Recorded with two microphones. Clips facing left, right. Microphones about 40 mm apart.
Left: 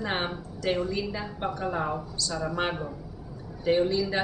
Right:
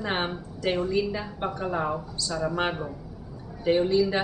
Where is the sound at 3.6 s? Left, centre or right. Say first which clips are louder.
Right 2 dB; centre.